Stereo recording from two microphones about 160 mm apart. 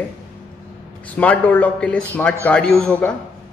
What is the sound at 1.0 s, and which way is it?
A man's voice, 10° left (ahead or behind).